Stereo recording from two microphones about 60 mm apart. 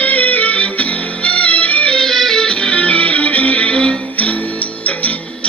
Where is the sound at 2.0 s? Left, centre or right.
Centre.